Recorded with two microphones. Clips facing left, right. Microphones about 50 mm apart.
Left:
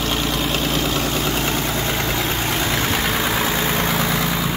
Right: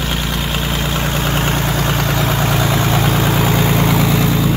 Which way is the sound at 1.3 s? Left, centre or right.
Right.